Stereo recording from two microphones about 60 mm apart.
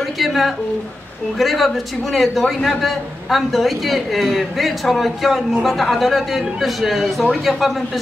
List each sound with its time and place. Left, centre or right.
0.2 s a woman's voice: centre